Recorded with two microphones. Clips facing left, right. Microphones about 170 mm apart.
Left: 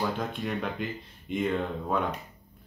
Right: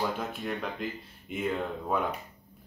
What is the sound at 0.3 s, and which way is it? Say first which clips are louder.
Speech: left 2 dB; centre (ahead or behind).